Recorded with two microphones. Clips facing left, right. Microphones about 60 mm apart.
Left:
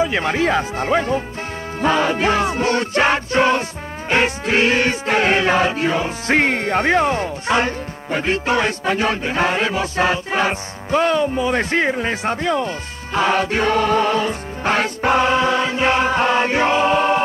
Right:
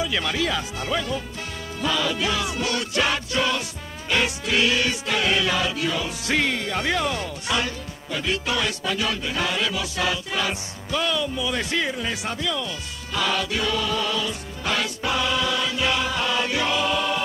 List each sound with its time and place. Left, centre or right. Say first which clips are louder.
0.0 s music: left 7 dB; left